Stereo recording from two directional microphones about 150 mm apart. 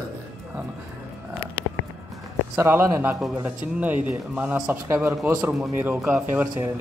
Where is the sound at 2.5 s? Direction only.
15° right (ahead or behind).